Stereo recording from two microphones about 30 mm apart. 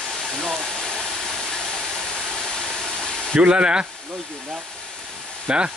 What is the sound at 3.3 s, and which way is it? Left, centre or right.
Speech, right.